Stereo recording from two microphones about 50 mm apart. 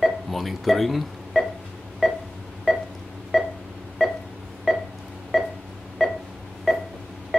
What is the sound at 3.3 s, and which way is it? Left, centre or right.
Pulse, centre.